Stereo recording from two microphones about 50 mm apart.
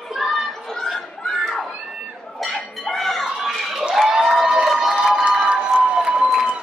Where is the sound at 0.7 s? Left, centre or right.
Centre.